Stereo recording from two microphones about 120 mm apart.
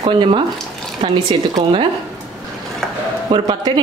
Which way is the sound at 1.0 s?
45° right (ahead or behind).